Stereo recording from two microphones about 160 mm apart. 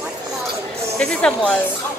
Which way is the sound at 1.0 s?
5° left (ahead or behind).